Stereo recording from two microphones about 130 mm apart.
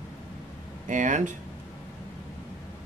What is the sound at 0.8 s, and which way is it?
Speech, 75° right (ahead or behind).